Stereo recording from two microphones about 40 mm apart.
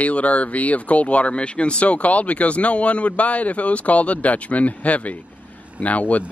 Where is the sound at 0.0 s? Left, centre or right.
Left.